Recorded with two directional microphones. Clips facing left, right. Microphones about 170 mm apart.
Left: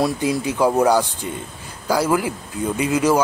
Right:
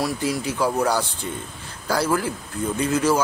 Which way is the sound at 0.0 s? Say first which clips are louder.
Left 4 dB; 20° left (ahead or behind).